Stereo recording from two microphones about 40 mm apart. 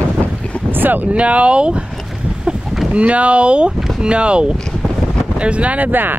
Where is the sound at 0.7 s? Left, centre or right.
Right.